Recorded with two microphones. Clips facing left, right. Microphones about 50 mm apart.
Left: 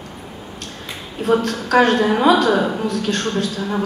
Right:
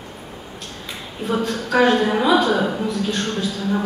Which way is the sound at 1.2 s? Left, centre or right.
Left.